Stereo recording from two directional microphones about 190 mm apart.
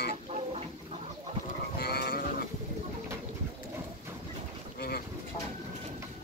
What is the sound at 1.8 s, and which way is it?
Sheep, 55° left (ahead or behind).